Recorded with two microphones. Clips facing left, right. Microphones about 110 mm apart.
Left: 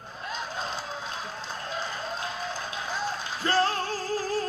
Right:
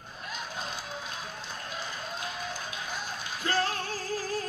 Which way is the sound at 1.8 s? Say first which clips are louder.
Left 4 dB; 30° left (ahead or behind).